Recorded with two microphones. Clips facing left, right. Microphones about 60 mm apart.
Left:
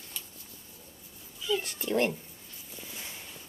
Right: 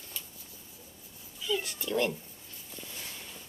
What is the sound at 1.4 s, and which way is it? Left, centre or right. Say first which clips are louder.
Cat: left 2 dB; centre.